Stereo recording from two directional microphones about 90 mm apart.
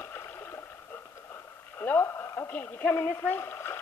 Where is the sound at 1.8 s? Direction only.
25° left (ahead or behind).